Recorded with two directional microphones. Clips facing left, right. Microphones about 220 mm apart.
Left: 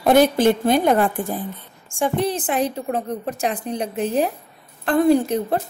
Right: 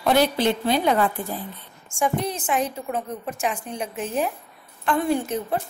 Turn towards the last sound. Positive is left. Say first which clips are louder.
# left 6 dB
turn(degrees=35)  # may be behind; listen again after turning